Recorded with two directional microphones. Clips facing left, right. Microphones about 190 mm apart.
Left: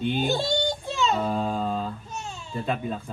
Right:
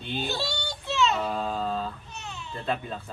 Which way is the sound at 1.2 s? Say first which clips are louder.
Left 3 dB; 15° left (ahead or behind).